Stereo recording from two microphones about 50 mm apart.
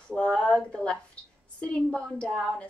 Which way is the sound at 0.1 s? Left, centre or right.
Left.